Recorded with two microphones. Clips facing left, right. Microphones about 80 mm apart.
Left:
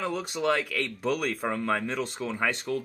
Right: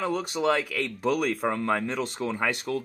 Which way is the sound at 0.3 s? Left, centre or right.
Centre.